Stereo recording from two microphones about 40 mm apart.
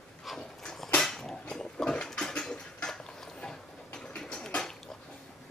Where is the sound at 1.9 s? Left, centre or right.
Centre.